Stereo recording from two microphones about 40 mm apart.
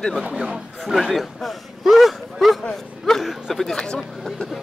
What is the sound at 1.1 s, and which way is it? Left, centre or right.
Speech, centre.